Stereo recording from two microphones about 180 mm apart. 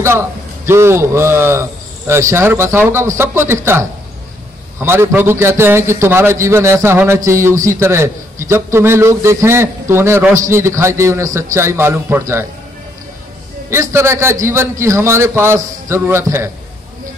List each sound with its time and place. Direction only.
0.0 s a man's voice: 15° right (ahead or behind)
13.7 s a man's voice: 15° right (ahead or behind)